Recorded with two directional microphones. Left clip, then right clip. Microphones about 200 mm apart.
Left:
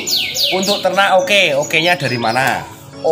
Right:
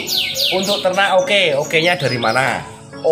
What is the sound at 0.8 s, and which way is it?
Speech, 20° left (ahead or behind).